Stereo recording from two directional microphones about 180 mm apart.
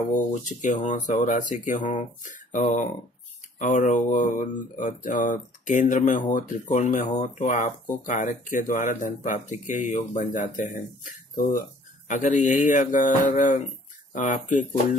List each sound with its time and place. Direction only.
0.3 s speech: 45° left (ahead or behind)